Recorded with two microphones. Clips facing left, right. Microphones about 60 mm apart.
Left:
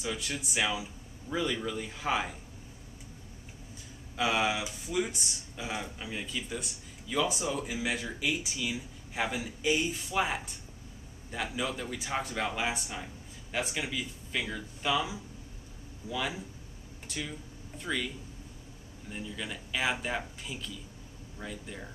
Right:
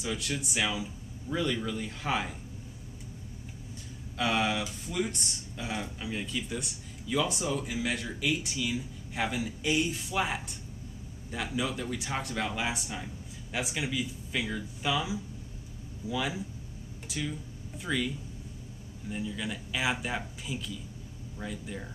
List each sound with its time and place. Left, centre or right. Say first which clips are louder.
0.0 s speech: right 2 dB; centre
4.2 s speech: even; centre
16.1 s speech: right 2 dB; centre